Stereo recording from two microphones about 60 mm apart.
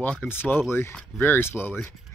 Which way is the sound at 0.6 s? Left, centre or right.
Left.